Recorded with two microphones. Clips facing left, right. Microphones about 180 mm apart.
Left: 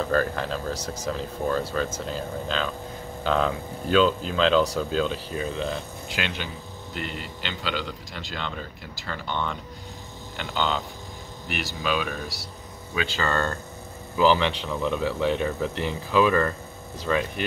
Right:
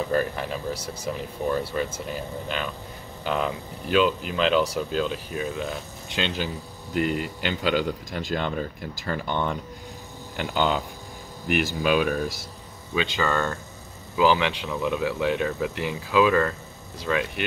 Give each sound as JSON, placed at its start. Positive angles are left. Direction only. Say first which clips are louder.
{"t": 0.0, "sound": "speech", "louder": "even", "side_deg": -15}
{"t": 6.0, "sound": "speech", "louder": "right 3 dB", "side_deg": -25}
{"t": 6.3, "sound": "a man's voice", "louder": "right 4 dB", "side_deg": -40}
{"t": 11.4, "sound": "a man's voice", "louder": "right 6 dB", "side_deg": -50}
{"t": 12.9, "sound": "speech", "louder": "right 2 dB", "side_deg": -20}